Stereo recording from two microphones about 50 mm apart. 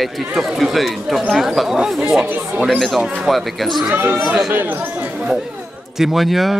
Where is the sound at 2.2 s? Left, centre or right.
Right.